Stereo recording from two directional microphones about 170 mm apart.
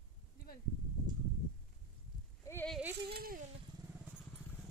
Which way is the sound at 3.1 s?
60° right (ahead or behind).